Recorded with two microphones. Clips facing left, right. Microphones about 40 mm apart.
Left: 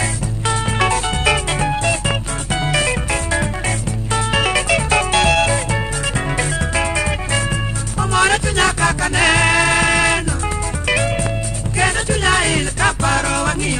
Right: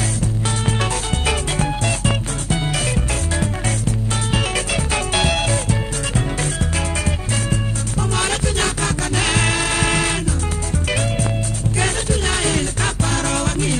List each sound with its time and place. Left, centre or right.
0.7 s music: left
5.7 s music: left
12.1 s music: left